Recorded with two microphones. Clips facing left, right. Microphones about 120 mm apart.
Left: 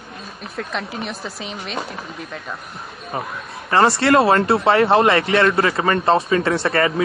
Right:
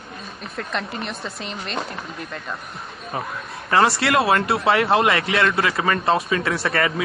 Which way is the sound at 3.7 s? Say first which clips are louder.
Left 3 dB; 30° left (ahead or behind).